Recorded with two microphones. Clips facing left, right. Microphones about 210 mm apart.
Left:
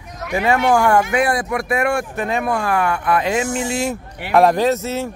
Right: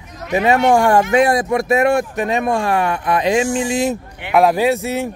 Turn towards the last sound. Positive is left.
turn(degrees=-15)  # may be behind; listen again after turning